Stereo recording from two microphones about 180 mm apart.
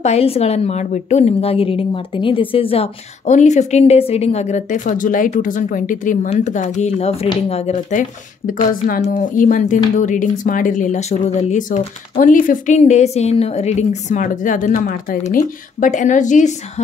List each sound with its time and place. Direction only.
0.0 s a woman's voice: 35° left (ahead or behind)